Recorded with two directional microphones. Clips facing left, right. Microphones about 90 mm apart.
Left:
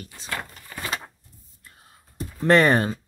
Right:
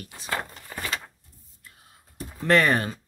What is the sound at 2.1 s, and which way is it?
Speech, 25° left (ahead or behind).